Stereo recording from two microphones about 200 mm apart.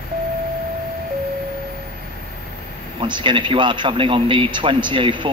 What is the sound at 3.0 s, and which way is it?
A man's voice, 25° right (ahead or behind).